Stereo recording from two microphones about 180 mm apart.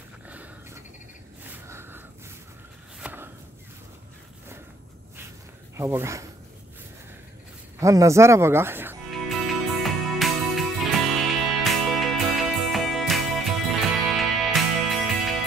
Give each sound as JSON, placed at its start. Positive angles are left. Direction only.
{"t": 0.3, "sound": "a sound", "side_deg": -10}
{"t": 3.0, "sound": "chop", "side_deg": -10}
{"t": 5.8, "sound": "speech", "side_deg": -15}
{"t": 7.8, "sound": "speech", "side_deg": -15}
{"t": 9.1, "sound": "music", "side_deg": 0}